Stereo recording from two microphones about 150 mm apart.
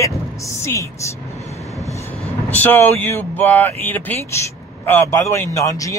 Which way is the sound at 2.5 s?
10° left (ahead or behind).